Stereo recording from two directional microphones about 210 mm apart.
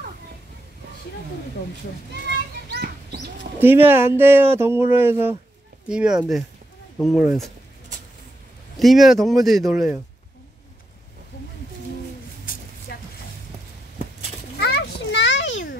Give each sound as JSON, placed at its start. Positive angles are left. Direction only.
{"t": 2.7, "sound": "chicken", "side_deg": -50}
{"t": 3.5, "sound": "speech", "side_deg": -10}
{"t": 8.7, "sound": "speech", "side_deg": 0}
{"t": 12.9, "sound": "a sound", "side_deg": 50}
{"t": 14.6, "sound": "children playing", "side_deg": 50}